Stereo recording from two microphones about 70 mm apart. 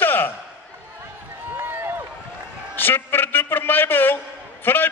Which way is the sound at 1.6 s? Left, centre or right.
Right.